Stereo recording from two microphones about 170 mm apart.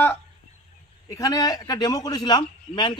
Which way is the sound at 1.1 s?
20° left (ahead or behind).